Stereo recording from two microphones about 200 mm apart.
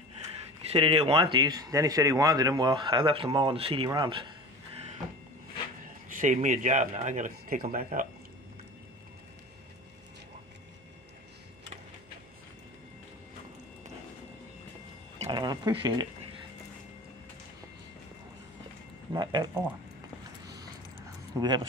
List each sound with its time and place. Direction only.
0.2 s speech: 30° right (ahead or behind)
6.2 s speech: 40° right (ahead or behind)
15.2 s speech: 20° right (ahead or behind)
19.1 s speech: 20° right (ahead or behind)
21.4 s speech: 20° right (ahead or behind)